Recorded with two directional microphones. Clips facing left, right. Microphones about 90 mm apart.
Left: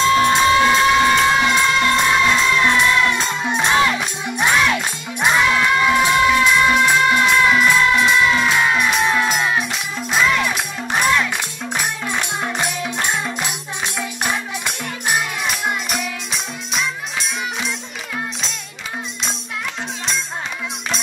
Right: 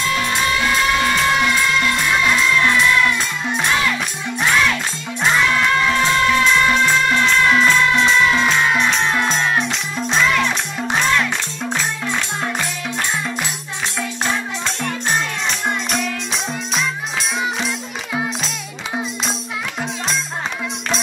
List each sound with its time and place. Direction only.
0.0 s music: 25° left (ahead or behind)
11.7 s music: 15° left (ahead or behind)